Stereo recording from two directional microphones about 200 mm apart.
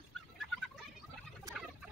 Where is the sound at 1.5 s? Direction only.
15° right (ahead or behind).